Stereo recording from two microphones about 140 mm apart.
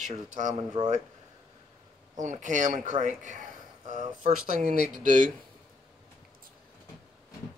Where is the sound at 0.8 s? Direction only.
35° right (ahead or behind).